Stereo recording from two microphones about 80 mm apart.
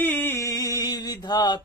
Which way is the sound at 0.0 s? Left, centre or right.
Left.